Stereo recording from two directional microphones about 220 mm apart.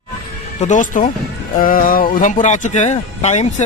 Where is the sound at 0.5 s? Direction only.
35° left (ahead or behind).